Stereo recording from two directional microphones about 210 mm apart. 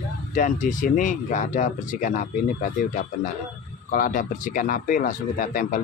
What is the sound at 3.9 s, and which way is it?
Speech, 40° left (ahead or behind).